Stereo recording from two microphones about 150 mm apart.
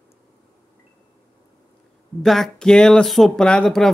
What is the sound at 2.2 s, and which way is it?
Speech, centre (ahead or behind).